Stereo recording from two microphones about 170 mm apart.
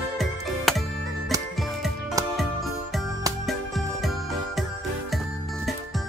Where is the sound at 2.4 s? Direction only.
Centre (ahead or behind).